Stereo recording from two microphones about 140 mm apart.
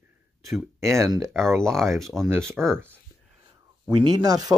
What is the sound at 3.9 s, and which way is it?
Speech, 30° right (ahead or behind).